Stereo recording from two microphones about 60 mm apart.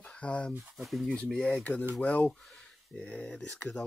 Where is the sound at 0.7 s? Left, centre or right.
Centre.